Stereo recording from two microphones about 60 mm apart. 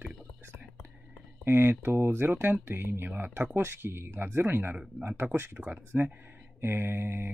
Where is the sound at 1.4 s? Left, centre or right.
Right.